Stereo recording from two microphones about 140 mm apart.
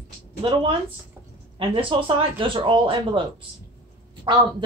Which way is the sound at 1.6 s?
40° right (ahead or behind).